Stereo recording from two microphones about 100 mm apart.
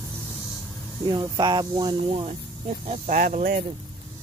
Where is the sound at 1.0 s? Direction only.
45° right (ahead or behind).